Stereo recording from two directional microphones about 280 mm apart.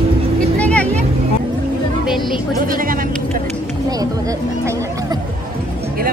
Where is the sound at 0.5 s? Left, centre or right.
Centre.